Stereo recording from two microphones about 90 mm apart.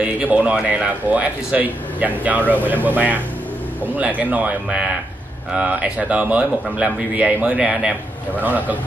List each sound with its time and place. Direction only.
0.0 s a man's voice: 15° right (ahead or behind)
3.9 s a man's voice: 15° right (ahead or behind)